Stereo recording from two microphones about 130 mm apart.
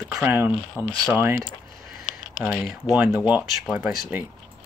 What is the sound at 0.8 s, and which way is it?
Speech, 15° left (ahead or behind).